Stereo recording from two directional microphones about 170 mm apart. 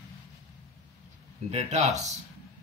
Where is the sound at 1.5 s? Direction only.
40° right (ahead or behind).